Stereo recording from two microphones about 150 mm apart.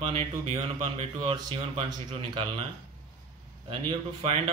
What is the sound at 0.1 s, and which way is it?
Speech, 40° right (ahead or behind).